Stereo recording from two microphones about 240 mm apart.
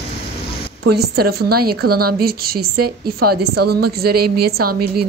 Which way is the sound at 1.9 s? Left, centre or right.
Right.